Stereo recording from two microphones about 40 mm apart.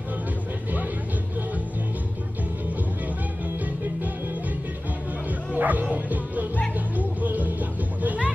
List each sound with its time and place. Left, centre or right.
5.5 s speech: right
7.0 s music: right